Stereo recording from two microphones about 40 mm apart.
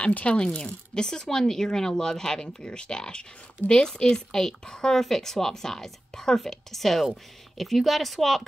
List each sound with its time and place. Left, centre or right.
0.0 s speech: left; by 8.4 s centre